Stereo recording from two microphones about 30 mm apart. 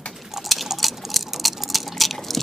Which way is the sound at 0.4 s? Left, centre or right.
Centre.